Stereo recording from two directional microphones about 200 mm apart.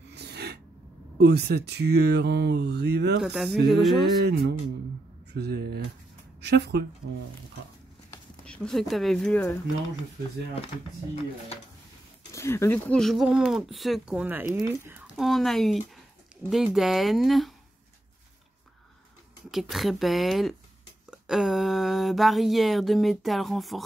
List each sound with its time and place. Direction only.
0.1 s a sound: 55° right (ahead or behind)
1.1 s speech: 55° right (ahead or behind)
3.2 s speech: centre (ahead or behind)
4.2 s speech: 55° right (ahead or behind)
8.1 s speech: 5° left (ahead or behind)
12.3 s speech: 15° left (ahead or behind)
19.7 s speech: centre (ahead or behind)